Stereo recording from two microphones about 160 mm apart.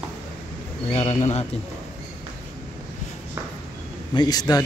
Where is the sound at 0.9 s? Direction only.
40° left (ahead or behind).